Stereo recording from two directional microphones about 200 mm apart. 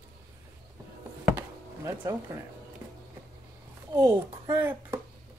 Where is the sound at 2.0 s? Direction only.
15° right (ahead or behind).